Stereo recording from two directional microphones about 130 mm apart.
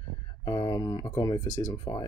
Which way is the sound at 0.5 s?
30° left (ahead or behind).